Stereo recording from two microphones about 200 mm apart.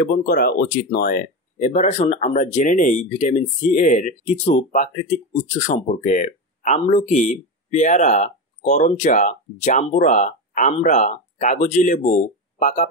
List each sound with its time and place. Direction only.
0.0 s speech: 50° left (ahead or behind)
1.6 s speech: 35° left (ahead or behind)